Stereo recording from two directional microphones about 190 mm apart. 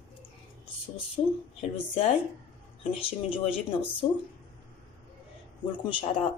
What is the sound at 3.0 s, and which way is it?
Speech, 30° left (ahead or behind).